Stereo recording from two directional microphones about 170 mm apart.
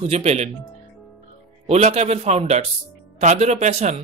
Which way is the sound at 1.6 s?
40° right (ahead or behind).